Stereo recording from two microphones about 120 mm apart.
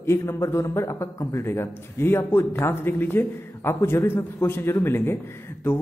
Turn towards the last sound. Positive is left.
turn(degrees=20)  # may be behind; listen again after turning